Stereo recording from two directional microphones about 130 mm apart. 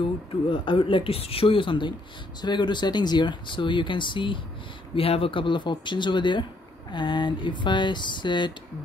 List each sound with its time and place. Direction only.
0.5 s speech: 40° left (ahead or behind)